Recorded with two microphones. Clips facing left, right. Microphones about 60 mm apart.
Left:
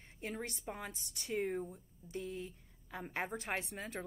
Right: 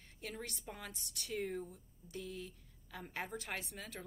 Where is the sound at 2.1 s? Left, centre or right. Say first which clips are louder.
Left 3 dB; left.